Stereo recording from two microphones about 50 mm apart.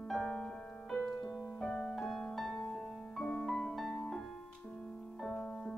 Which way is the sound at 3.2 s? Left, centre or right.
Left.